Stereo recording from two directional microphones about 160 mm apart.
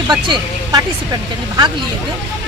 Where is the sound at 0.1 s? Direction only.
25° right (ahead or behind).